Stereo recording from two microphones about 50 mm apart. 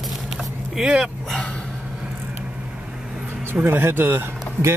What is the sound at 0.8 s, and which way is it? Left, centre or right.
Speech, centre.